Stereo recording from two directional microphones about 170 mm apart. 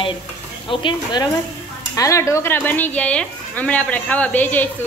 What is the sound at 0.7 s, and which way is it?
Speech, 30° left (ahead or behind).